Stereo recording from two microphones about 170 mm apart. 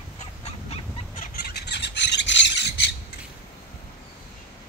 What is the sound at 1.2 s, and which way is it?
Bird, 65° left (ahead or behind).